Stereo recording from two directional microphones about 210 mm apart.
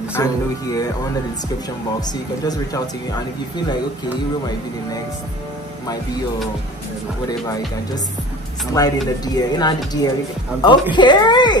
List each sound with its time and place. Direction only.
0.1 s speech: 15° left (ahead or behind)
2.0 s speech: 20° left (ahead or behind)
7.2 s speech: 20° left (ahead or behind)